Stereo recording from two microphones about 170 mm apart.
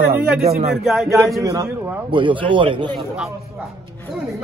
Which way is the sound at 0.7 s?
Centre (ahead or behind).